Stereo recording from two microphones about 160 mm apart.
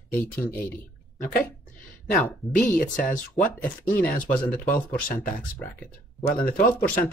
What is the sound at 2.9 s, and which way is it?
Speech, 55° left (ahead or behind).